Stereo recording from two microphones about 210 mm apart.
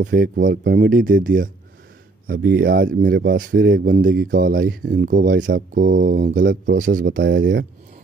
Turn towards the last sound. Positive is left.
turn(degrees=-50)  # may be behind; listen again after turning